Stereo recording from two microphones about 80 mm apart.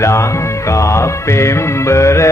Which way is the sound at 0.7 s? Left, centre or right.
Left.